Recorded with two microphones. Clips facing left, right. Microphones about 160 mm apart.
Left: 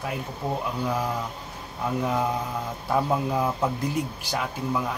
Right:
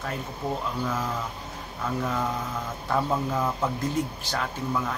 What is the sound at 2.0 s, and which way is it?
Speech, 15° left (ahead or behind).